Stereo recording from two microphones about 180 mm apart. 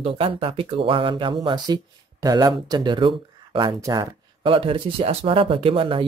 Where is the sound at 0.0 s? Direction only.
30° right (ahead or behind).